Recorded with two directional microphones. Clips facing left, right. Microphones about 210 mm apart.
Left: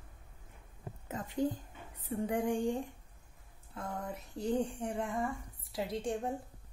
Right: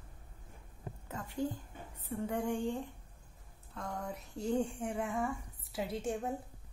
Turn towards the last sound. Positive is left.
turn(degrees=-5)  # may be behind; listen again after turning